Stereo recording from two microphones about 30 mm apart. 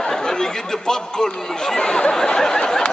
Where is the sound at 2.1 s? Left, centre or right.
Left.